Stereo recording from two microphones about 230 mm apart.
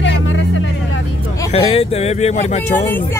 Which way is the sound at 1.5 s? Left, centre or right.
Left.